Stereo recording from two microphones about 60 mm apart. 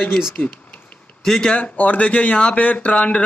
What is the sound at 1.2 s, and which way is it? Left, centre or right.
Speech, centre.